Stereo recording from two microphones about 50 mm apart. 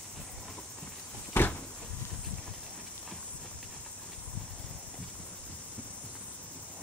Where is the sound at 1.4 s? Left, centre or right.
Left.